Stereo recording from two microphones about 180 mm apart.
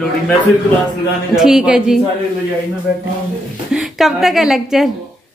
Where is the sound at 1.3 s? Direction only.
Centre (ahead or behind).